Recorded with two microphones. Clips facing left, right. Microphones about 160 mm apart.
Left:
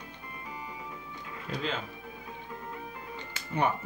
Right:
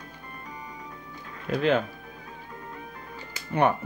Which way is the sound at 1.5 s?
60° right (ahead or behind).